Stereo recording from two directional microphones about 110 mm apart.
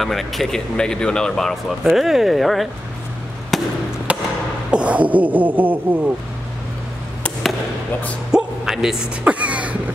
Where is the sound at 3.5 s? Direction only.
Centre (ahead or behind).